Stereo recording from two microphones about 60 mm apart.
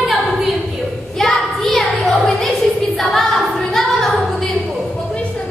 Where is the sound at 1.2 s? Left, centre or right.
Centre.